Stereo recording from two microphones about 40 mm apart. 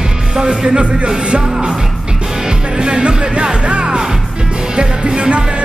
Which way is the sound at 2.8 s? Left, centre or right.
Right.